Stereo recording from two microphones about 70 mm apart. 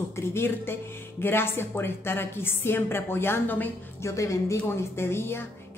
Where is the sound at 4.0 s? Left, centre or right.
Left.